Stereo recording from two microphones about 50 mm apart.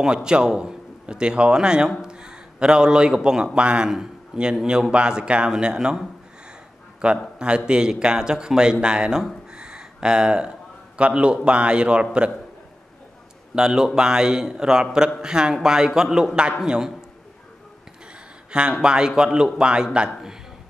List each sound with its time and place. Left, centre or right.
0.0 s a man's voice: centre
9.5 s a sound: centre
11.0 s a man's voice: right
13.6 s a man's voice: centre
18.5 s a man's voice: centre